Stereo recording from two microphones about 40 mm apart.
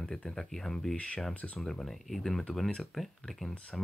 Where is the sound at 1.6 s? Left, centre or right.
Centre.